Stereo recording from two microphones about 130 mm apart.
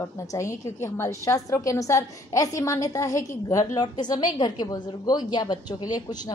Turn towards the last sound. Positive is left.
turn(degrees=30)  # may be behind; listen again after turning